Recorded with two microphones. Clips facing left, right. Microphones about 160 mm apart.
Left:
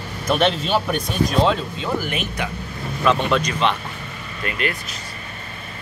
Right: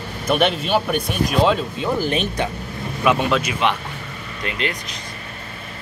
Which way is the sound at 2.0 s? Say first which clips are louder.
Right 4 dB; 30° right (ahead or behind).